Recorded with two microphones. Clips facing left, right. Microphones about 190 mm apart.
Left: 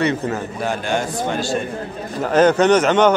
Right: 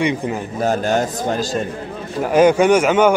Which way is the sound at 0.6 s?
40° right (ahead or behind).